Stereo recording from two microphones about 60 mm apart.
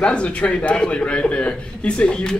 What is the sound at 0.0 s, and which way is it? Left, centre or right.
A man's voice, centre.